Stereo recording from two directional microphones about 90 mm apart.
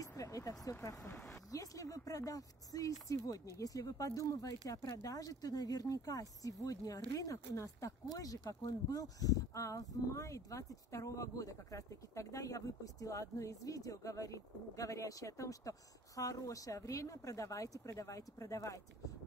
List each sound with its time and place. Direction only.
0.0 s vehicle: 40° left (ahead or behind)
0.7 s speech: 35° left (ahead or behind)